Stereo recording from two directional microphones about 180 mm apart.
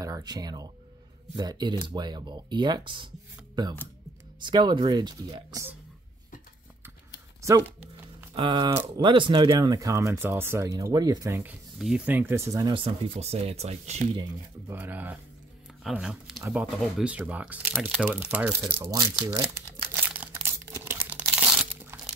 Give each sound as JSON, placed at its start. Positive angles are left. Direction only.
{"t": 0.0, "sound": "speech", "side_deg": -20}
{"t": 4.4, "sound": "speech", "side_deg": -25}
{"t": 8.4, "sound": "speech", "side_deg": -25}
{"t": 14.7, "sound": "speech", "side_deg": -10}
{"t": 17.9, "sound": "crumpling", "side_deg": -5}